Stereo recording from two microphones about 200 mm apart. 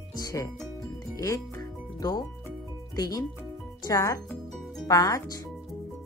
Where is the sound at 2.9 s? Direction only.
20° left (ahead or behind).